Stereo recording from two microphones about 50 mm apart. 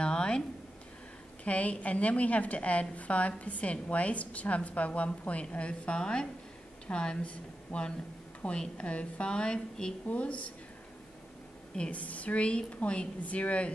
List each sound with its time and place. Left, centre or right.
0.0 s a sound: centre
1.4 s a woman's voice: left
10.0 s a woman's voice: left
11.9 s a woman's voice: left